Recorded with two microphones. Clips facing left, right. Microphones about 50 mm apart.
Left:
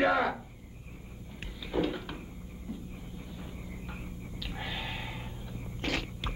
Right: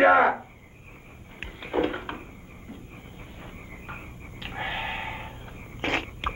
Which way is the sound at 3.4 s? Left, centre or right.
Right.